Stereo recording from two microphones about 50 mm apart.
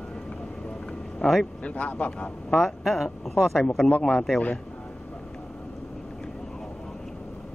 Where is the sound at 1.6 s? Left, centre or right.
Left.